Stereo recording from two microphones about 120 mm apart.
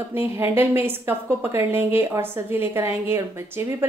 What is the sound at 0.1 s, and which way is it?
A woman's voice, 20° right (ahead or behind).